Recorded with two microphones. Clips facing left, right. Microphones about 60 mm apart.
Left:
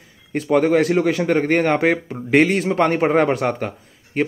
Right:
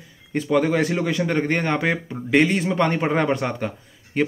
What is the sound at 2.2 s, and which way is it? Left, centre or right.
Speech, left.